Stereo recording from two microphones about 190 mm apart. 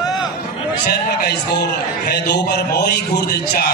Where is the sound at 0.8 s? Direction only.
55° left (ahead or behind).